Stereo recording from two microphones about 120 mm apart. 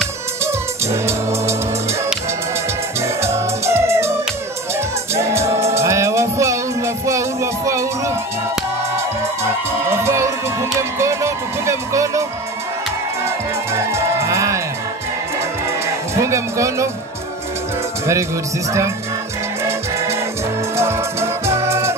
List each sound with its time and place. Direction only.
3.2 s music: 25° right (ahead or behind)
5.1 s music: 25° right (ahead or behind)
9.4 s music: 25° right (ahead or behind)
13.7 s music: 25° right (ahead or behind)
16.2 s speech: 25° right (ahead or behind)
20.7 s music: 25° right (ahead or behind)